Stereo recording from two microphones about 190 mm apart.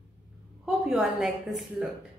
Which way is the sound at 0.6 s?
Centre (ahead or behind).